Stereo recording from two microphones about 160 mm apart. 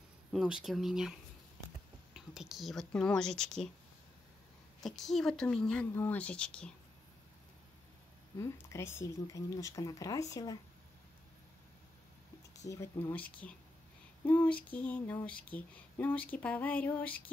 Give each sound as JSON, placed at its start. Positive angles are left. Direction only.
{"t": 0.3, "sound": "speech", "side_deg": -5}
{"t": 2.1, "sound": "speech", "side_deg": -5}
{"t": 4.7, "sound": "speech", "side_deg": 0}
{"t": 8.4, "sound": "speech", "side_deg": 20}
{"t": 12.6, "sound": "a sound", "side_deg": 20}